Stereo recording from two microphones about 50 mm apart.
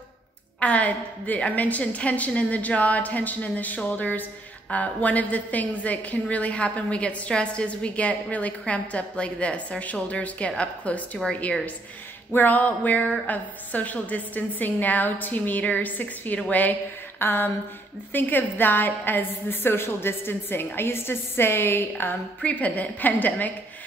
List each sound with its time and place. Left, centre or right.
0.6 s a woman's voice: left
12.3 s a woman's voice: left
17.2 s a sound: left
18.1 s a woman's voice: left
22.4 s a woman's voice: left